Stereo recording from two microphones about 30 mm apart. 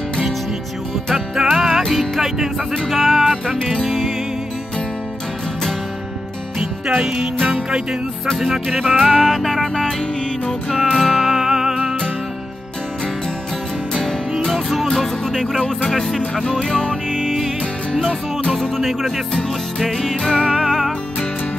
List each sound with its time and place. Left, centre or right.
1.1 s music: centre
1.9 s music: centre
2.2 s music: centre
2.9 s music: centre
6.6 s music: right
8.4 s music: centre
9.1 s music: centre
14.4 s music: centre
14.9 s speech: centre
18.8 s music: centre